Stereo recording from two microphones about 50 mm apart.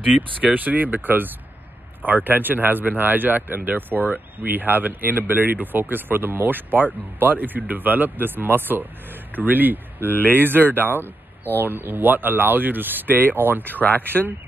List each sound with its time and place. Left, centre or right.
0.0 s speech: right
10.0 s speech: left
10.3 s speech: right
13.7 s speech: left